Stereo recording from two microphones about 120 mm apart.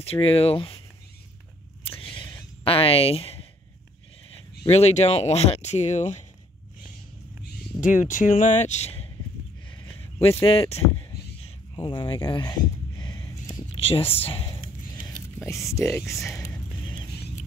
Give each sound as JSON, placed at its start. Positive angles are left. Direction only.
{"t": 0.0, "sound": "speech", "side_deg": 55}
{"t": 2.1, "sound": "a sound", "side_deg": 50}
{"t": 4.6, "sound": "speech", "side_deg": 65}
{"t": 7.8, "sound": "speech", "side_deg": 90}
{"t": 10.2, "sound": "speech", "side_deg": 50}
{"t": 11.7, "sound": "a sound", "side_deg": 40}
{"t": 13.7, "sound": "speech", "side_deg": 55}
{"t": 15.4, "sound": "speech", "side_deg": 25}